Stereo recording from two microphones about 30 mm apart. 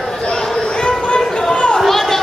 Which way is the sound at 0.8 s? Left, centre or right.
Left.